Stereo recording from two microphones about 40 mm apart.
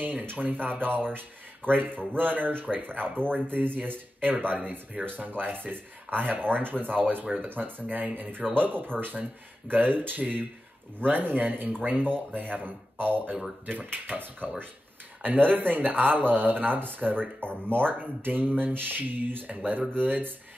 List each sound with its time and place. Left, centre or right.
0.0 s speech: right